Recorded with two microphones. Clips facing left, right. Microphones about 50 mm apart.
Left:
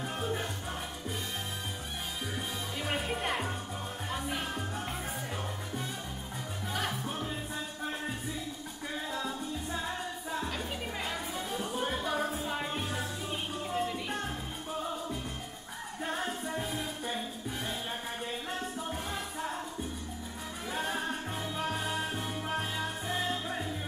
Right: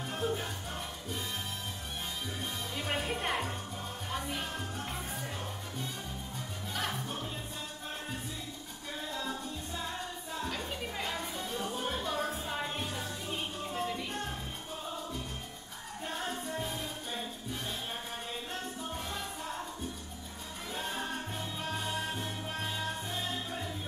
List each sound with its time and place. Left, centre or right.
0.0 s music: centre
2.8 s music: centre
6.7 s music: centre
10.5 s music: centre
16.3 s music: centre
20.7 s music: left